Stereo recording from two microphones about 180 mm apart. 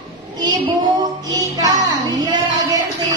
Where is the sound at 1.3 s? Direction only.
20° right (ahead or behind).